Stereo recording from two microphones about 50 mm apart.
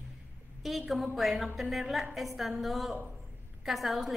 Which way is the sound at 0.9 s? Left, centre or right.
Centre.